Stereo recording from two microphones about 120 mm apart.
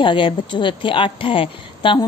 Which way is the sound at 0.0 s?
45° left (ahead or behind).